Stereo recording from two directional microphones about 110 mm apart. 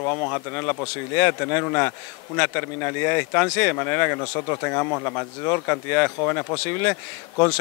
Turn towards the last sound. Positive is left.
turn(degrees=20)  # may be behind; listen again after turning